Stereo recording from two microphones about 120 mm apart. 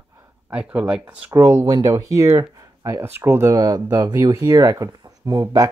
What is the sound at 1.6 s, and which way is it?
Speech, 35° right (ahead or behind).